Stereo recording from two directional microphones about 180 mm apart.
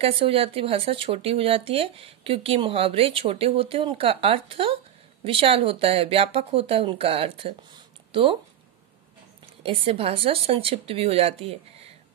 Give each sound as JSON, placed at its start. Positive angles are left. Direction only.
{"t": 0.0, "sound": "speech", "side_deg": -30}
{"t": 9.6, "sound": "speech", "side_deg": -30}